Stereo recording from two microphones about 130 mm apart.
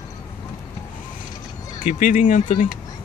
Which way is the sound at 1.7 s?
90° left.